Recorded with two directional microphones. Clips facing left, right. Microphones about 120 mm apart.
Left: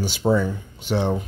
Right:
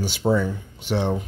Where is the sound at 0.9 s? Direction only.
40° left (ahead or behind).